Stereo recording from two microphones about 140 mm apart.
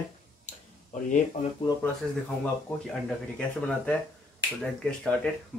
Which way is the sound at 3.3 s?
10° left (ahead or behind).